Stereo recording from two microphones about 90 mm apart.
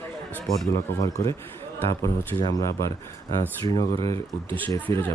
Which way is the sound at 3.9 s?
40° left (ahead or behind).